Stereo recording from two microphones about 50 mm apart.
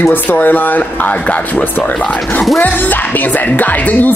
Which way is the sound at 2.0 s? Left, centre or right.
Left.